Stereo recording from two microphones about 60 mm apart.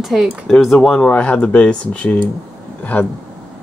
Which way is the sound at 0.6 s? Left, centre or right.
Centre.